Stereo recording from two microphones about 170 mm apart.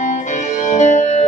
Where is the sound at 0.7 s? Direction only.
45° left (ahead or behind).